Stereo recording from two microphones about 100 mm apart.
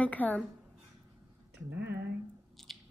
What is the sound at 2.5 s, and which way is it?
Squish, centre (ahead or behind).